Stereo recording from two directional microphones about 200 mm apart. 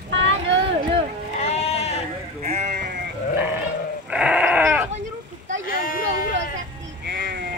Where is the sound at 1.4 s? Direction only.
30° left (ahead or behind).